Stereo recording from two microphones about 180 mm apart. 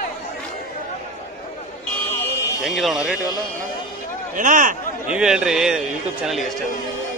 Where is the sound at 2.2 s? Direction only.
15° left (ahead or behind).